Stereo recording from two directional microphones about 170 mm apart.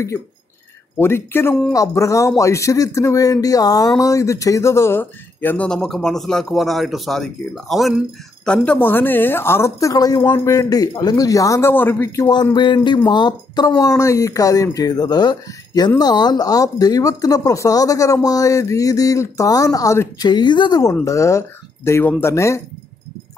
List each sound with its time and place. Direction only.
0.9 s speech: 15° left (ahead or behind)
12.5 s speech: 25° left (ahead or behind)